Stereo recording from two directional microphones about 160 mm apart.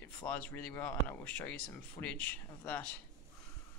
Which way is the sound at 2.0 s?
20° left (ahead or behind).